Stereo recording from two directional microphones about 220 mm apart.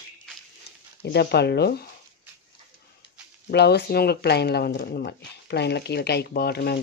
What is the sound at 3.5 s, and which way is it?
Speech, 50° left (ahead or behind).